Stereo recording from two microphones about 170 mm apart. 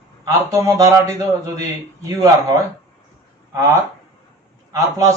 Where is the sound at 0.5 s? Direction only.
20° right (ahead or behind).